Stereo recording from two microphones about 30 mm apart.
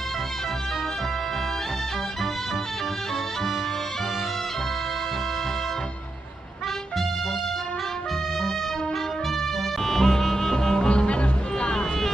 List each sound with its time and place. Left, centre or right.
9.8 s music: centre
10.9 s music: left